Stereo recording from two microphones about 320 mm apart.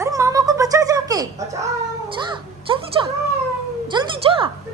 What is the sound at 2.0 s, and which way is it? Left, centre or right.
A woman's voice, centre.